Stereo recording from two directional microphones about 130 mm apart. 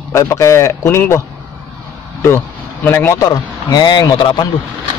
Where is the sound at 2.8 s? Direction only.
20° left (ahead or behind).